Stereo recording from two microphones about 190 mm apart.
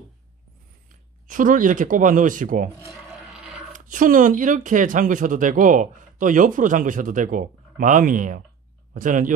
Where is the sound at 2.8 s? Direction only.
5° right (ahead or behind).